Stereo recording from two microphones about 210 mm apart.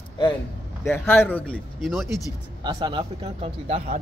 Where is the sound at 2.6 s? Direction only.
20° right (ahead or behind).